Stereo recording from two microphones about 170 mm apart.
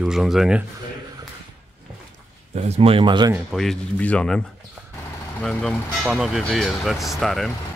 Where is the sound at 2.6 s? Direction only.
35° right (ahead or behind).